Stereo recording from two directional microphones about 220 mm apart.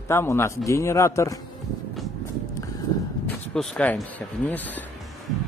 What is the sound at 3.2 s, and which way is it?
Speech, 5° left (ahead or behind).